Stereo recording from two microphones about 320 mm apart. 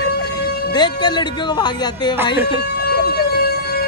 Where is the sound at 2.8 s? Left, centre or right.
Left.